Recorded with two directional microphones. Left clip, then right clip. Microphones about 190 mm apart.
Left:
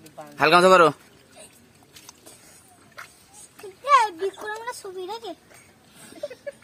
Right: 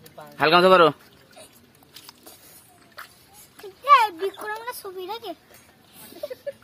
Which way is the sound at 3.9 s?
35° left (ahead or behind).